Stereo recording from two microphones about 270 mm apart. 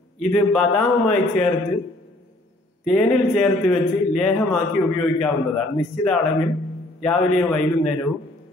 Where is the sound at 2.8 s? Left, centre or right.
Centre.